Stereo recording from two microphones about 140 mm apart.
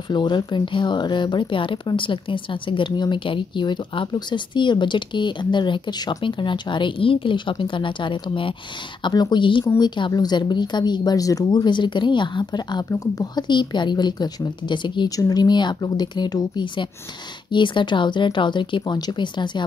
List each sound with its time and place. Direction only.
0.1 s speech: 30° left (ahead or behind)